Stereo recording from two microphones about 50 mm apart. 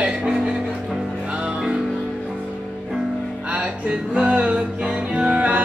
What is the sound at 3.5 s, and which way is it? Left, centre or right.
Music, right.